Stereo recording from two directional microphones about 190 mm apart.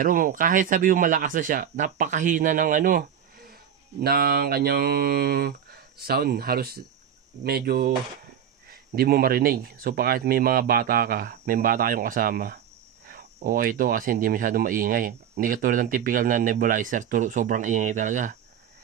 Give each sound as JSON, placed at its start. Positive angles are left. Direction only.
{"t": 0.0, "sound": "a man's voice", "side_deg": -45}